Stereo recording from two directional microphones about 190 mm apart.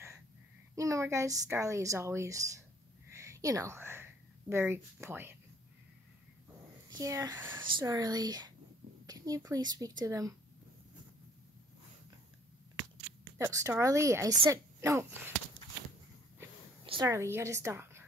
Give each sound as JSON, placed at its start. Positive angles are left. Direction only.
{"t": 0.7, "sound": "speech", "side_deg": -15}
{"t": 6.9, "sound": "speech", "side_deg": -20}
{"t": 7.6, "sound": "a woman's voice", "side_deg": -20}
{"t": 13.4, "sound": "speech", "side_deg": -15}
{"t": 16.8, "sound": "a sound", "side_deg": -25}
{"t": 17.1, "sound": "speech", "side_deg": -15}